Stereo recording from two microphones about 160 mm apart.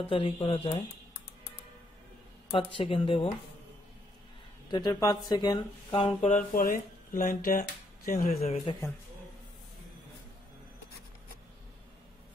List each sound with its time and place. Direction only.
0.1 s speech: 35° left (ahead or behind)
2.5 s speech: 35° left (ahead or behind)
4.6 s speech: 25° left (ahead or behind)
6.3 s speech: 55° left (ahead or behind)
8.3 s speech: 40° left (ahead or behind)